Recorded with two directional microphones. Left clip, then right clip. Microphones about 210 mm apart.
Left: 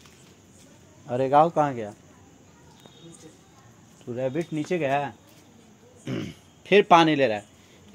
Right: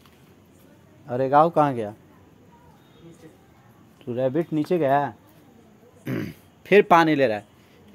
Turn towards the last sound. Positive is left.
turn(degrees=-15)  # may be behind; listen again after turning